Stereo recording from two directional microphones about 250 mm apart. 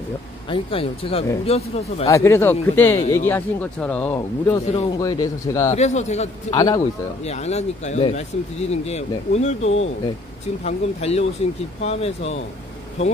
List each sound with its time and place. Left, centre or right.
0.5 s speech: left
2.0 s speech: centre
4.6 s speech: left
5.8 s speech: left
6.5 s speech: centre
7.2 s speech: left